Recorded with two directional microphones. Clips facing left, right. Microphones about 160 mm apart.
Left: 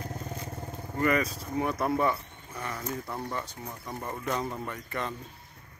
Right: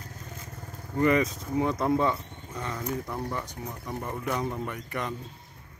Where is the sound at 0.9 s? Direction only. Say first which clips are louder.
Right 3 dB; 20° right (ahead or behind).